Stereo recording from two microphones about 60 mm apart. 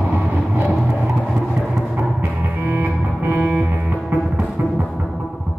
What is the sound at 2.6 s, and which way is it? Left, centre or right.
Music, right.